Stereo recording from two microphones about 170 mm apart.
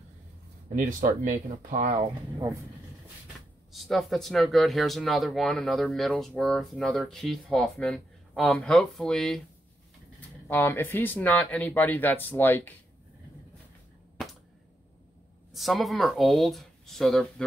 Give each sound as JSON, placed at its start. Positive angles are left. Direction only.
{"t": 0.7, "sound": "speech", "side_deg": -50}
{"t": 2.3, "sound": "speech", "side_deg": -20}
{"t": 3.3, "sound": "speech", "side_deg": 0}
{"t": 10.5, "sound": "speech", "side_deg": 10}
{"t": 15.5, "sound": "speech", "side_deg": 0}